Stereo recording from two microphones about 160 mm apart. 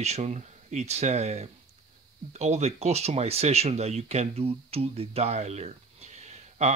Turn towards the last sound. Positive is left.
turn(degrees=-45)  # may be behind; listen again after turning